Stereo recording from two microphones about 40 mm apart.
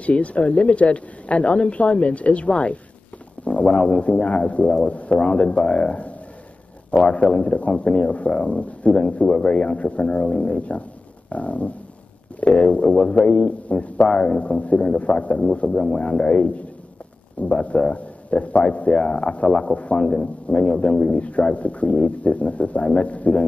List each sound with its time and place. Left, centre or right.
0.0 s a woman's voice: left
3.6 s a man's voice: centre
4.0 s a woman's voice: left
7.2 s a man's voice: centre
7.5 s a woman's voice: left
9.2 s a woman's voice: left
12.4 s a man's voice: left
14.4 s a woman's voice: left
15.7 s a man's voice: centre; by 23.4 s left